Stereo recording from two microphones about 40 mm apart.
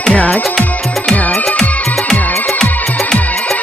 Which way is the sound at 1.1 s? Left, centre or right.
Left.